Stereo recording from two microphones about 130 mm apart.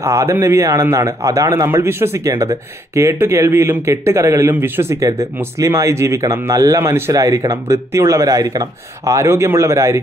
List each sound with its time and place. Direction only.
0.0 s speech: 20° right (ahead or behind)